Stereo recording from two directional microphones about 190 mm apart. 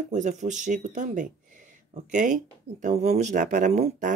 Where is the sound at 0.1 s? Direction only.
40° right (ahead or behind).